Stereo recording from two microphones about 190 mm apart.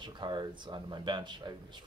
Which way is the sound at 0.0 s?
25° right (ahead or behind).